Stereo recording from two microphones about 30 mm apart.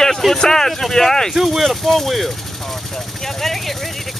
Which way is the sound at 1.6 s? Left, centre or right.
Centre.